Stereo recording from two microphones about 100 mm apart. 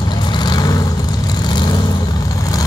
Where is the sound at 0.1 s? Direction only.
45° left (ahead or behind).